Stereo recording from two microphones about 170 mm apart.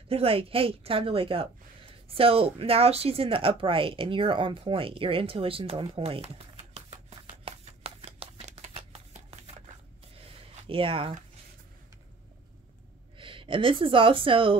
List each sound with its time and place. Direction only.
0.1 s a woman's voice: 35° right (ahead or behind)
6.9 s a sound: 35° right (ahead or behind)
13.2 s speech: 30° right (ahead or behind)